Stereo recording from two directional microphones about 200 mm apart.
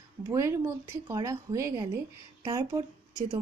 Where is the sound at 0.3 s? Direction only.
15° right (ahead or behind).